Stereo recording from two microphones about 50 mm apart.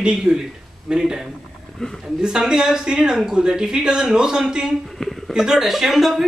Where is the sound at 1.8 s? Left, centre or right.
Centre.